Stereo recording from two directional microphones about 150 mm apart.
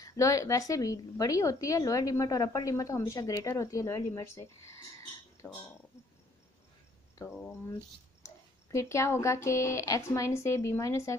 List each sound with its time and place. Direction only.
0.0 s a woman's voice: 20° left (ahead or behind)
7.2 s a woman's voice: 15° left (ahead or behind)